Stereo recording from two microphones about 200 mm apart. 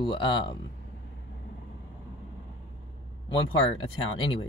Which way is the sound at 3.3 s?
25° left (ahead or behind).